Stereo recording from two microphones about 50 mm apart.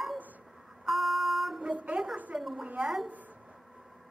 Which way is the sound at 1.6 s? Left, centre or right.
Right.